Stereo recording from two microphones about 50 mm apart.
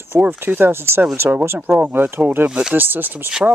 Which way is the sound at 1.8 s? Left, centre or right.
Right.